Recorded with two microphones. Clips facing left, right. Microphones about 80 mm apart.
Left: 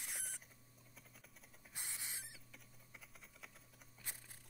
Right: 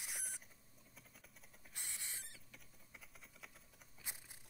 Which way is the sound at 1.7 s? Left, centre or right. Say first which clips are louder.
Left 1 dB; centre.